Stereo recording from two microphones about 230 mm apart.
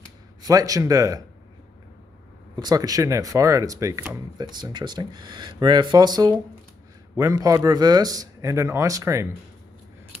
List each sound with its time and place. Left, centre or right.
0.4 s speech: centre
2.5 s speech: centre